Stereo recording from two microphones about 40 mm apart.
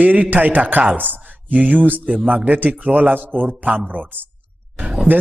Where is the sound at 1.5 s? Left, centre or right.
Right.